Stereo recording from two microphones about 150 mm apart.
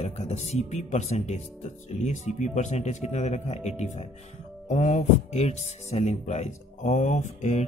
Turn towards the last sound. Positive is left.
turn(degrees=50)  # may be behind; listen again after turning